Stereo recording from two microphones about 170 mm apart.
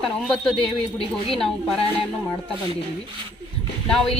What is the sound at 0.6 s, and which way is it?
Speech, 35° left (ahead or behind).